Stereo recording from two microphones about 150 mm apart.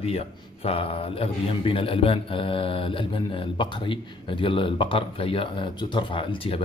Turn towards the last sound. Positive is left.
turn(degrees=35)  # may be behind; listen again after turning